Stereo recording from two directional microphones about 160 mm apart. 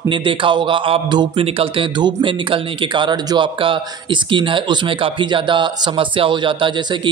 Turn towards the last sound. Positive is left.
turn(degrees=-30)  # may be behind; listen again after turning